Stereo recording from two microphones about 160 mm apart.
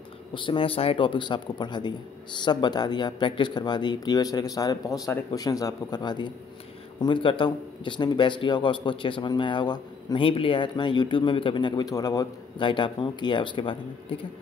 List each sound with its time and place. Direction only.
0.3 s a man's voice: 30° left (ahead or behind)